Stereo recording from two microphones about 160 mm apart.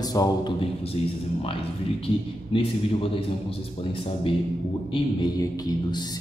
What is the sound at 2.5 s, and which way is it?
Speech, 35° left (ahead or behind).